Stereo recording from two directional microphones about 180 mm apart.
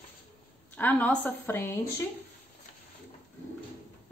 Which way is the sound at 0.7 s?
10° left (ahead or behind).